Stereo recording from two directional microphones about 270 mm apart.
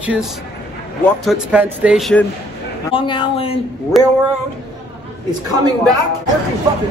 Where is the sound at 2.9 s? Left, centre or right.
Centre.